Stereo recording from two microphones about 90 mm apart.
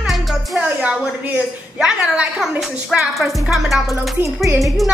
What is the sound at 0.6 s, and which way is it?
Music, 10° right (ahead or behind).